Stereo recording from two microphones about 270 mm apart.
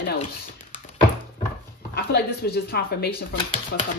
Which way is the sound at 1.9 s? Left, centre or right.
Left.